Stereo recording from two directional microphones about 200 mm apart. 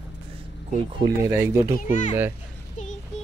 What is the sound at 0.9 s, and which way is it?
Speech, 15° right (ahead or behind).